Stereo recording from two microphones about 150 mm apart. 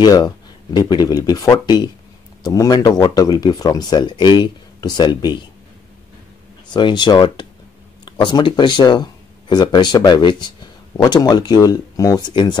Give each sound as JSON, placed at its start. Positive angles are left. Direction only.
{"t": 0.0, "sound": "speech", "side_deg": 30}
{"t": 6.7, "sound": "speech", "side_deg": 30}